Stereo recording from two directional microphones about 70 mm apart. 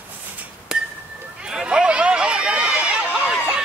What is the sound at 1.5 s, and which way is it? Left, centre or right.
Run, centre.